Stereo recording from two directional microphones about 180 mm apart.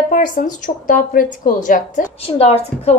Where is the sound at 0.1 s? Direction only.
45° left (ahead or behind).